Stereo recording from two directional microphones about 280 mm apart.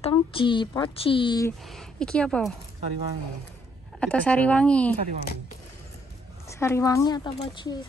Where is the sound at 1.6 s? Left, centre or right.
Centre.